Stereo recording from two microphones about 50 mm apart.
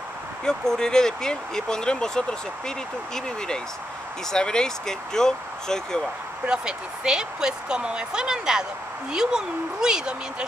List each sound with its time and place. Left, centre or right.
0.5 s speech: centre
6.5 s speech: centre